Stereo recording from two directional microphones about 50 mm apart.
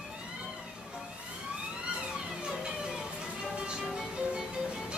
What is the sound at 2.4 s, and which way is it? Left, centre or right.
Music, centre.